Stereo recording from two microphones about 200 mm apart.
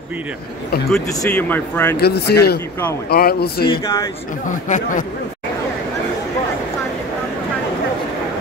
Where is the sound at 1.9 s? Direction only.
55° left (ahead or behind).